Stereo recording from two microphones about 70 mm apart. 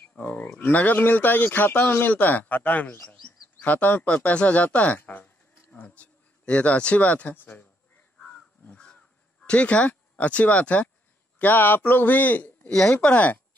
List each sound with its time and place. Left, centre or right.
0.1 s speech: left
8.6 s crow: centre
11.3 s speech: left